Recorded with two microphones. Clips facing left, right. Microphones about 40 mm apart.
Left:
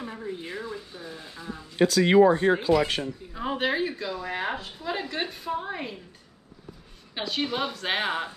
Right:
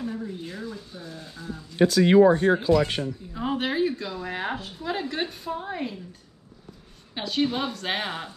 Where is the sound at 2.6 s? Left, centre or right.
Centre.